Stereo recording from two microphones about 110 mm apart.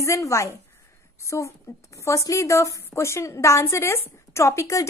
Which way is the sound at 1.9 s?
25° left (ahead or behind).